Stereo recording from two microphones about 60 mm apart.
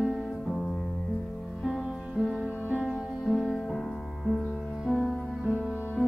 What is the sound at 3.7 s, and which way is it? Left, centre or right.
Music, centre.